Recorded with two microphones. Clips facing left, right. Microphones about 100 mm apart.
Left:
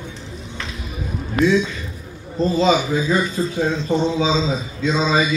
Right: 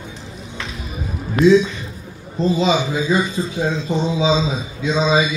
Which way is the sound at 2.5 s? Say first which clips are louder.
Left 3 dB; 15° right (ahead or behind).